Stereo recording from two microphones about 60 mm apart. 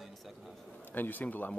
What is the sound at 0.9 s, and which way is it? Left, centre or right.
Speech, left.